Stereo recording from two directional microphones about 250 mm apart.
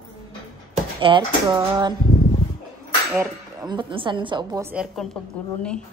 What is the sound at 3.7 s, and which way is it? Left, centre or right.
A woman's voice, centre.